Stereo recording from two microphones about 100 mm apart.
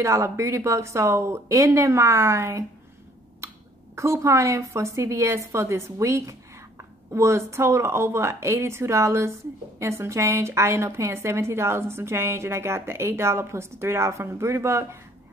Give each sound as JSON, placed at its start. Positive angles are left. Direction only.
{"t": 0.0, "sound": "a woman's voice", "side_deg": -30}
{"t": 3.4, "sound": "cough", "side_deg": -30}
{"t": 3.9, "sound": "a woman's voice", "side_deg": -30}